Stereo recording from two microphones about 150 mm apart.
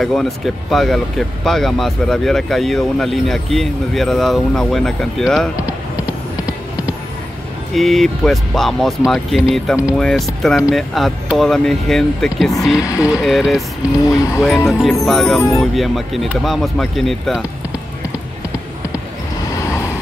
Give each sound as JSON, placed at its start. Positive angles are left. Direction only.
{"t": 0.0, "sound": "speech", "side_deg": 0}
{"t": 7.7, "sound": "speech", "side_deg": 0}
{"t": 12.8, "sound": "speech", "side_deg": 20}
{"t": 13.2, "sound": "speech", "side_deg": 0}
{"t": 13.9, "sound": "speech", "side_deg": 25}
{"t": 14.7, "sound": "speech", "side_deg": 0}
{"t": 19.5, "sound": "vehicle", "side_deg": 20}